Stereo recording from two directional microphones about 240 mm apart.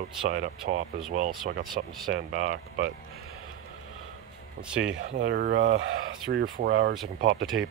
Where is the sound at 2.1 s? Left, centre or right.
Right.